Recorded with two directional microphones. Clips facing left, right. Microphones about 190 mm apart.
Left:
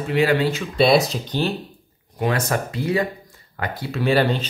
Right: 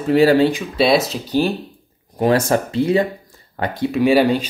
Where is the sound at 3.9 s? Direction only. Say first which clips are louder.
Right 5 dB; 15° right (ahead or behind).